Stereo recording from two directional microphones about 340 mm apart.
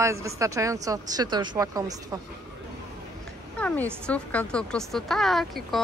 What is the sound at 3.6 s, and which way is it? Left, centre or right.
A woman's voice, centre.